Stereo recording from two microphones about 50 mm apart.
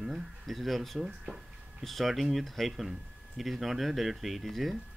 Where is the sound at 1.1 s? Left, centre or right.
Centre.